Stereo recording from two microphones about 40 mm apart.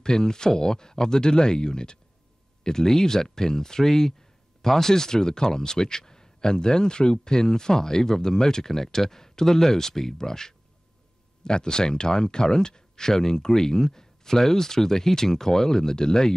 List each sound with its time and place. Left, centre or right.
0.0 s speech: centre